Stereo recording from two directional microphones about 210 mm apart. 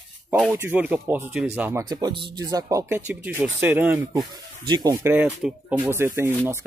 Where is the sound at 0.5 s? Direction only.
10° right (ahead or behind).